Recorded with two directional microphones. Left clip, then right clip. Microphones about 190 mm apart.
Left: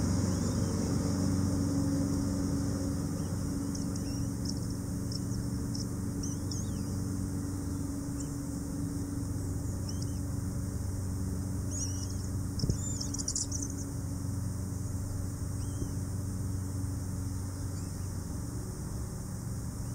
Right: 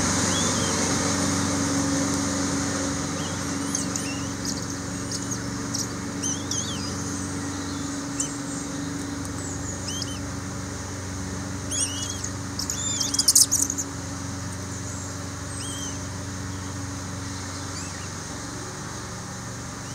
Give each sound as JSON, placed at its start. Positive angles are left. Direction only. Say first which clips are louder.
{"t": 0.0, "sound": "vehicle", "louder": "right 11 dB", "side_deg": -10}
{"t": 13.1, "sound": "cricket", "louder": "right 18 dB", "side_deg": -50}